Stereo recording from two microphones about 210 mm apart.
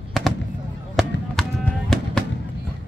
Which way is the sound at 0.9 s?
5° left (ahead or behind).